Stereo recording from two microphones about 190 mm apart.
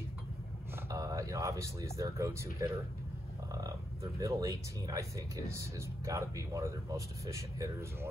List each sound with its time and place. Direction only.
0.8 s speech: 15° right (ahead or behind)